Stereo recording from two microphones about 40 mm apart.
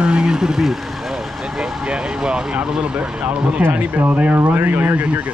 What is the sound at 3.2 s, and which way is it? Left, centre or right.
Speech, right.